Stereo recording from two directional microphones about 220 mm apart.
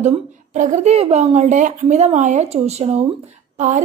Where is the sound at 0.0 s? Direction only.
35° right (ahead or behind).